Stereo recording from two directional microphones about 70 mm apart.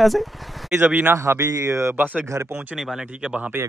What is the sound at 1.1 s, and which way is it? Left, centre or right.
Speech, right.